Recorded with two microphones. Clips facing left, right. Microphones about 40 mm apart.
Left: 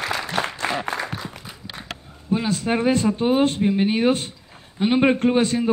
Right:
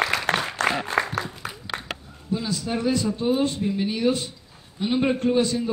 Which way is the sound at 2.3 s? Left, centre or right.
Left.